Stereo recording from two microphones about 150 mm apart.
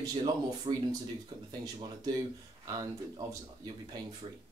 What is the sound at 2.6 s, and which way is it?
Speech, 25° right (ahead or behind).